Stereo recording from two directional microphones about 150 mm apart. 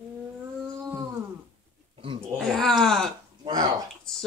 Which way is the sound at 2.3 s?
Centre (ahead or behind).